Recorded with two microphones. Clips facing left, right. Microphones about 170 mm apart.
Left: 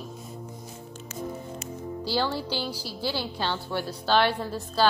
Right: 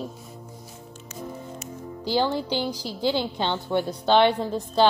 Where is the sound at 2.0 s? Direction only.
15° right (ahead or behind).